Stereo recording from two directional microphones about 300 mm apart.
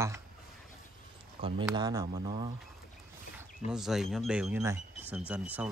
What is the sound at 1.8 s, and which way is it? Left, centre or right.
Speech, centre.